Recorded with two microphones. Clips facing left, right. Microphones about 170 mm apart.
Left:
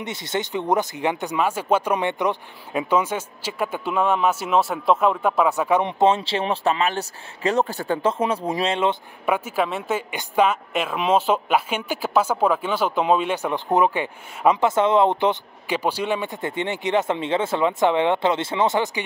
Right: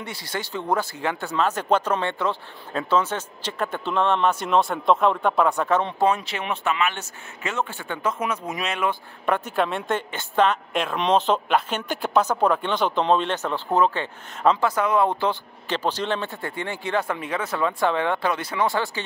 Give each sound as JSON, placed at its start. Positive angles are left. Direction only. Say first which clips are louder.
{"t": 0.0, "sound": "a woman's voice", "louder": "left 5 dB", "side_deg": 20}
{"t": 9.2, "sound": "a woman's voice", "louder": "left 1 dB", "side_deg": 10}